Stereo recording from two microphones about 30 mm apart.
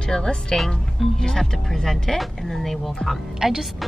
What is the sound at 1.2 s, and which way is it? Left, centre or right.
Speech, centre.